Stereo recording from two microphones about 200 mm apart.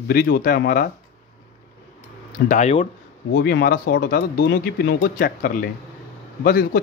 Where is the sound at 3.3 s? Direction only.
50° left (ahead or behind).